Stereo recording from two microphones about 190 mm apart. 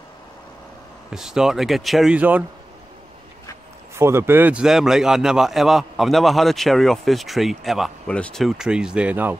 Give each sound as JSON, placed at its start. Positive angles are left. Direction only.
{"t": 1.1, "sound": "a man's voice", "side_deg": -5}
{"t": 3.9, "sound": "a man's voice", "side_deg": -15}